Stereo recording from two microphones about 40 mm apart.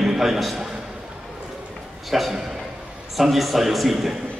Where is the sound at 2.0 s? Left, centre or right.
Centre.